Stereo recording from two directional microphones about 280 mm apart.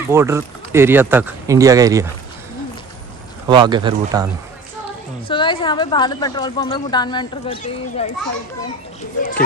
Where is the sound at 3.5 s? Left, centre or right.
Centre.